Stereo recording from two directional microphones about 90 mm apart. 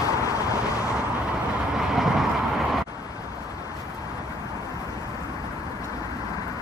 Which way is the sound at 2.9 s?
45° left (ahead or behind).